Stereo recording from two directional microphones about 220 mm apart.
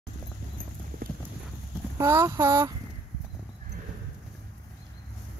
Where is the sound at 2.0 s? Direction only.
15° right (ahead or behind).